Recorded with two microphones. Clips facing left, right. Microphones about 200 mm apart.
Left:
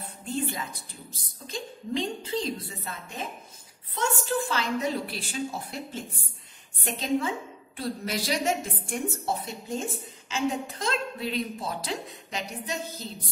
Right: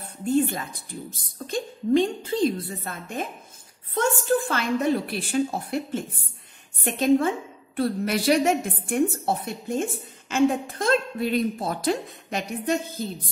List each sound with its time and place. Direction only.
1.5 s a woman's voice: 55° right (ahead or behind)
6.8 s a woman's voice: 55° right (ahead or behind)